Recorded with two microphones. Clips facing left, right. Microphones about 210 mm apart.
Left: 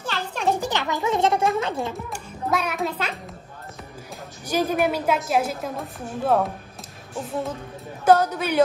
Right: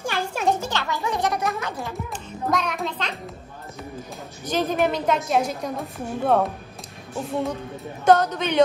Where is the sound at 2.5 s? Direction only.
5° left (ahead or behind).